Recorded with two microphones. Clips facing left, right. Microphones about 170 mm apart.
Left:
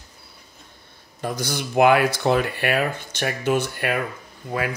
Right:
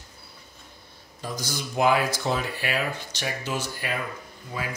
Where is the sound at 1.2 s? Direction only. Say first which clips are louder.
Left 6 dB; 65° left (ahead or behind).